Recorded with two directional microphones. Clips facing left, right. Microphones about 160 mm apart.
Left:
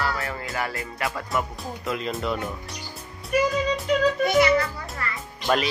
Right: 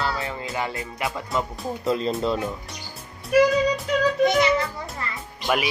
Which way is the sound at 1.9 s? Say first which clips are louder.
Right 5 dB; 35° right (ahead or behind).